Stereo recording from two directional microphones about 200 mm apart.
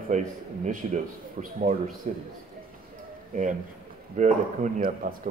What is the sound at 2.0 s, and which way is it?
Speech, 35° right (ahead or behind).